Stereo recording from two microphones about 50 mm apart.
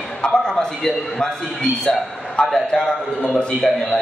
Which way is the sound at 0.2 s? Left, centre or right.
Centre.